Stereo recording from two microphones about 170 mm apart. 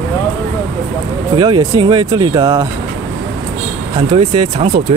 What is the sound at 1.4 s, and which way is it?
Speech, 25° right (ahead or behind).